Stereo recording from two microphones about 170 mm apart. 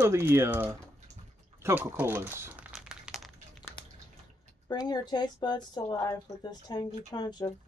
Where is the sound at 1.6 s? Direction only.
15° right (ahead or behind).